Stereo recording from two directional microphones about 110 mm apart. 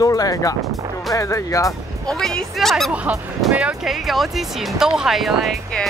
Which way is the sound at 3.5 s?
10° right (ahead or behind).